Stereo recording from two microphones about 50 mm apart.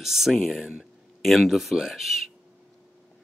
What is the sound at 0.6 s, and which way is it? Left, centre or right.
Speech, centre.